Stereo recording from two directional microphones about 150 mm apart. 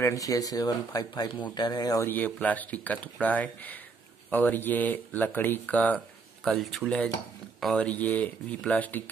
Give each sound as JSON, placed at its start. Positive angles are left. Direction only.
{"t": 0.0, "sound": "speech", "side_deg": 20}
{"t": 2.0, "sound": "speech", "side_deg": 10}